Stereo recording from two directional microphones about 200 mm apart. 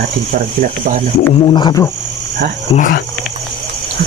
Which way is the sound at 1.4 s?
20° left (ahead or behind).